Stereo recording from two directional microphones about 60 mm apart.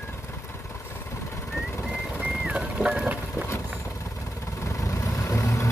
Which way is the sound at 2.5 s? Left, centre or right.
Right.